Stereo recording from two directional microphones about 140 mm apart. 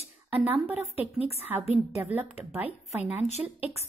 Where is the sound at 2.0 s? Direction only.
15° right (ahead or behind).